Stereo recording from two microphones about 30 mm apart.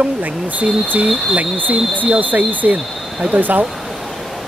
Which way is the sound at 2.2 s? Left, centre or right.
Right.